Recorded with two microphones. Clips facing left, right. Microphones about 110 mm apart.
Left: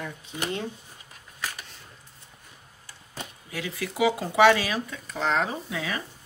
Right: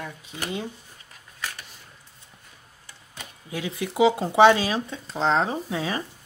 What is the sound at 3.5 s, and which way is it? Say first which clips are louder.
Speech: right 4 dB; 20° right (ahead or behind).